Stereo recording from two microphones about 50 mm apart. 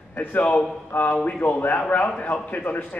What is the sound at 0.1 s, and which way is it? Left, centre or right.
Speech, left.